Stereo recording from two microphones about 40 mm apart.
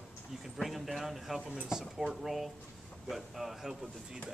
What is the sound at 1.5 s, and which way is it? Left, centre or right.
Speech, centre.